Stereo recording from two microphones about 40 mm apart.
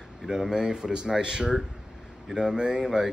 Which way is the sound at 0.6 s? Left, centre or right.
Centre.